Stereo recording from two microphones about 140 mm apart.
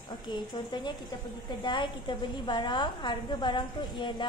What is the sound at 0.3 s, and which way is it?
A woman's voice, 35° left (ahead or behind).